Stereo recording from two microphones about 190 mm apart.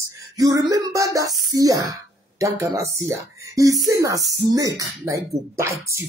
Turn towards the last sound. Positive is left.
turn(degrees=-15)  # may be behind; listen again after turning